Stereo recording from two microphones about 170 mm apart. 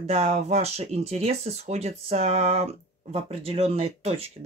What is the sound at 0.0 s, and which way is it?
Speech, 35° right (ahead or behind).